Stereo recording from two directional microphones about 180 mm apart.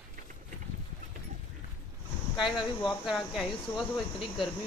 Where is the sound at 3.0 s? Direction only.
Centre (ahead or behind).